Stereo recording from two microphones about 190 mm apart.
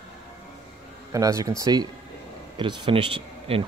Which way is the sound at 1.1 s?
15° right (ahead or behind).